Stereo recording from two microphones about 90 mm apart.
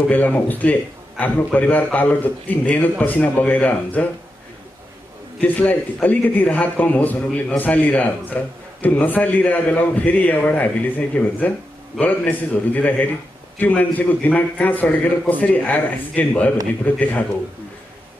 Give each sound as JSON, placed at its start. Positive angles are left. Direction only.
{"t": 0.1, "sound": "a man's voice", "side_deg": 20}
{"t": 5.4, "sound": "a man's voice", "side_deg": 20}